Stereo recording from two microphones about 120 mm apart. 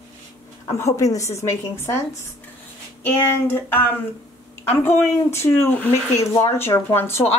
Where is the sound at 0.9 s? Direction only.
25° left (ahead or behind).